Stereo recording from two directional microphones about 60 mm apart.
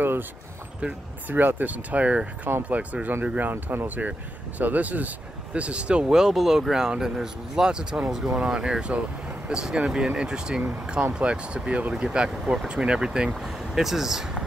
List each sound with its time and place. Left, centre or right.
0.7 s speech: centre
6.1 s speech: centre